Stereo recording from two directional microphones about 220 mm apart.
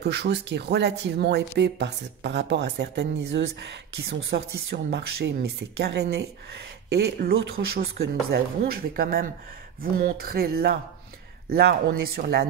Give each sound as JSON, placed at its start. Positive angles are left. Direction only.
{"t": 0.0, "sound": "speech", "side_deg": -50}